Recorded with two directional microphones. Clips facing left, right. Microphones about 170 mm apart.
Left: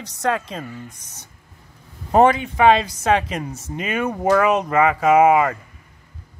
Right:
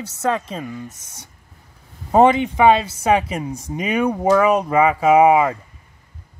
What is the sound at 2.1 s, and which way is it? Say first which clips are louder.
Speech: right 1 dB; 20° right (ahead or behind).